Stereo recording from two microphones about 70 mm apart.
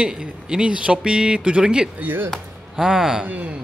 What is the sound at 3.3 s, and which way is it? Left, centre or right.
Speech, right.